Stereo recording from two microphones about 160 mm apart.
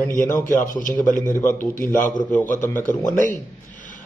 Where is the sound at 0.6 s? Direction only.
55° left (ahead or behind).